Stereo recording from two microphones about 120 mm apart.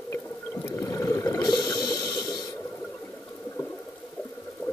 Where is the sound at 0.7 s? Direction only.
25° left (ahead or behind).